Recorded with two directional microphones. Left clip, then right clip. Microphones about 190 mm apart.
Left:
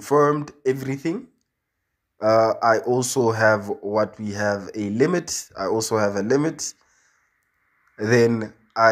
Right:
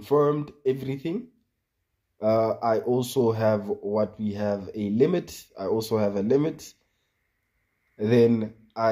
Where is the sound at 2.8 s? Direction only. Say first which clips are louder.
Left 3 dB; 40° left (ahead or behind).